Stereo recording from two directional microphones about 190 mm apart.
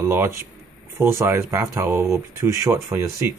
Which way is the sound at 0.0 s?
10° right (ahead or behind).